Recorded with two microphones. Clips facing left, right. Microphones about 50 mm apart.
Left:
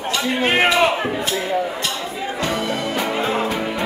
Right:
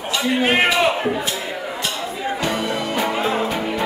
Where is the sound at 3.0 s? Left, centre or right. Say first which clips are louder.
Right 1 dB; centre.